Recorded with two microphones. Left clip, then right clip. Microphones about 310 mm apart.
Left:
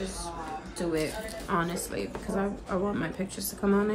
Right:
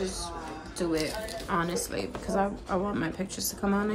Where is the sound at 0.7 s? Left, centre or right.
Centre.